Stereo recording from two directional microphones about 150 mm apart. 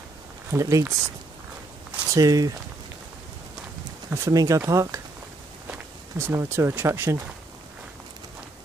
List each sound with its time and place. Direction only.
0.5 s speech: 20° right (ahead or behind)
2.1 s speech: 25° right (ahead or behind)
4.1 s speech: 20° right (ahead or behind)